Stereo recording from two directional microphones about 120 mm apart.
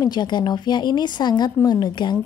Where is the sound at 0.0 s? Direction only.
35° left (ahead or behind).